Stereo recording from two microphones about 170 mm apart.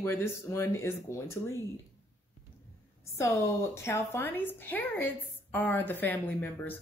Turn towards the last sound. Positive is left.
turn(degrees=10)  # may be behind; listen again after turning